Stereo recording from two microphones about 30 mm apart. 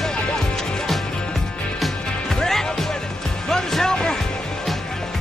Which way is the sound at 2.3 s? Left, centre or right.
Centre.